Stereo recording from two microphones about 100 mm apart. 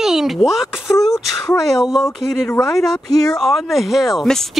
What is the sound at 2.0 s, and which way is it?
Speech, 25° left (ahead or behind).